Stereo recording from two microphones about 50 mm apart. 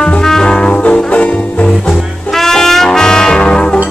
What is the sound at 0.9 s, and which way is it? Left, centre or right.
Music, left.